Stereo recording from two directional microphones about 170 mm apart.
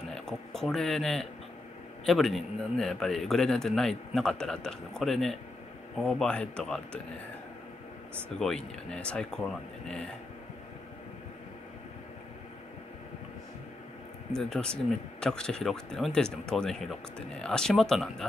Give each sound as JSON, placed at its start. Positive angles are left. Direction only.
{"t": 0.1, "sound": "speech", "side_deg": 0}
{"t": 8.4, "sound": "speech", "side_deg": 5}
{"t": 14.3, "sound": "speech", "side_deg": 5}